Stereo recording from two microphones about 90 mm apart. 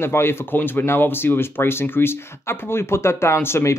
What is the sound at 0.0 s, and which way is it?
Speech, 25° left (ahead or behind).